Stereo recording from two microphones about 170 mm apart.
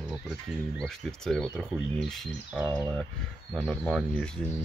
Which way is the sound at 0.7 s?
5° left (ahead or behind).